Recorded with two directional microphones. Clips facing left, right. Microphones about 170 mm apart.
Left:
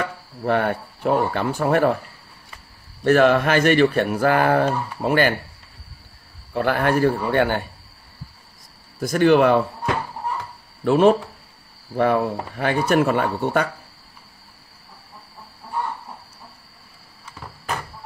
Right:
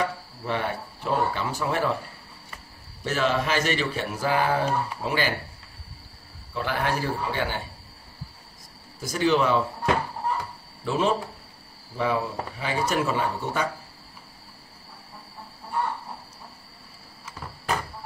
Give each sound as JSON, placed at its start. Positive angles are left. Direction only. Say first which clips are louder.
{"t": 0.4, "sound": "speech", "louder": "left 8 dB", "side_deg": 55}
{"t": 3.0, "sound": "speech", "louder": "left 10 dB", "side_deg": 60}
{"t": 6.5, "sound": "speech", "louder": "left 7 dB", "side_deg": 55}
{"t": 9.0, "sound": "speech", "louder": "left 7 dB", "side_deg": 55}
{"t": 10.8, "sound": "speech", "louder": "left 9 dB", "side_deg": 60}